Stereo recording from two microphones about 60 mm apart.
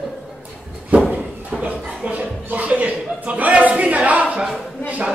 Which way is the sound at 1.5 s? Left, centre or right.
Centre.